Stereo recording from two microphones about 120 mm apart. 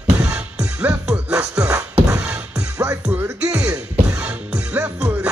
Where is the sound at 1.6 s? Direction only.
10° right (ahead or behind).